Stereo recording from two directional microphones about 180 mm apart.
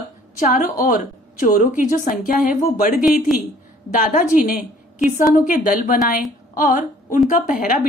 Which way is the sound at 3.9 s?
45° left (ahead or behind).